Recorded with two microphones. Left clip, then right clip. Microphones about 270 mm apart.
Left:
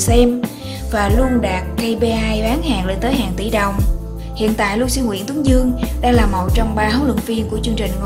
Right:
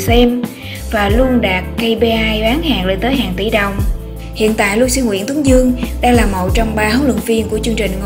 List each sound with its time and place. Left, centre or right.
0.0 s speech: centre